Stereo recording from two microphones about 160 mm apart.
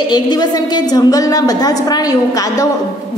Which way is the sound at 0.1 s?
25° left (ahead or behind).